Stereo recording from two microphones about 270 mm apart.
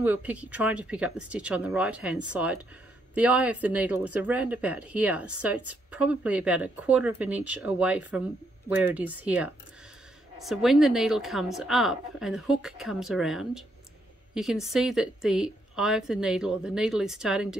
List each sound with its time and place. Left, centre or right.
0.0 s speech: centre